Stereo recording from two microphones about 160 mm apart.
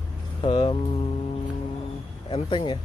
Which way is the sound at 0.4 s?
35° left (ahead or behind).